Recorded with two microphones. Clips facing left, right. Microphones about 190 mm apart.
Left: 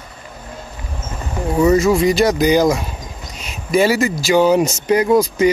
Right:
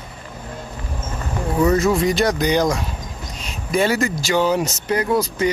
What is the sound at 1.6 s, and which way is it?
Speech, centre (ahead or behind).